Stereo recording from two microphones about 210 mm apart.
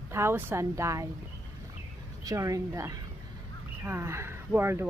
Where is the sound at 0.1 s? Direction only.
10° right (ahead or behind).